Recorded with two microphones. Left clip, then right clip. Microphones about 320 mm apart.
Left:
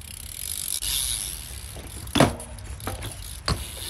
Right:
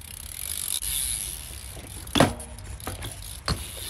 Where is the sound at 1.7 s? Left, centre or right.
Centre.